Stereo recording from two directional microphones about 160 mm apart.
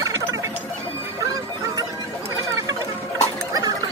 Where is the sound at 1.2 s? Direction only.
20° right (ahead or behind).